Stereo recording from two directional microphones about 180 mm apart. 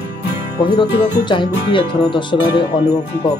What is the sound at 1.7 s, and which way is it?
Speech, 25° left (ahead or behind).